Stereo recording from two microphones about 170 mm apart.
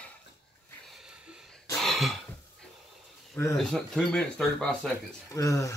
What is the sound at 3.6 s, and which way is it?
Speech, 5° left (ahead or behind).